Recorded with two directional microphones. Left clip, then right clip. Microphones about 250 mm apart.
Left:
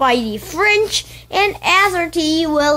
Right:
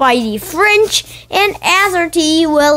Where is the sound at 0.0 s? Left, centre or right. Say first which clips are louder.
Right 3 dB; centre.